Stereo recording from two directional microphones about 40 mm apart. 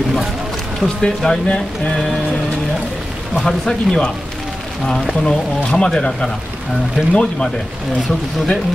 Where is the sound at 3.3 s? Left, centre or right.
Centre.